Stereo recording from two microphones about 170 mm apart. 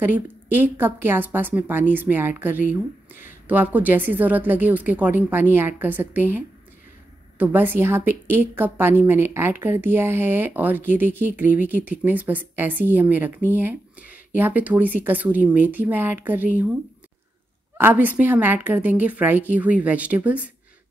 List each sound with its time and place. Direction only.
0.0 s a woman's voice: 10° right (ahead or behind)
17.7 s a woman's voice: 10° right (ahead or behind)